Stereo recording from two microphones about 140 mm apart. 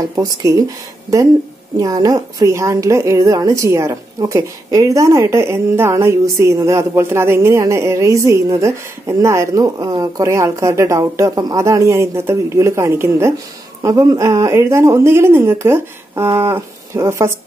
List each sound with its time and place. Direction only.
0.0 s a woman's voice: 25° right (ahead or behind)